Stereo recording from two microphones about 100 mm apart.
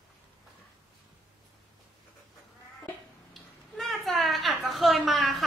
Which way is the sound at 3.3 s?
Centre (ahead or behind).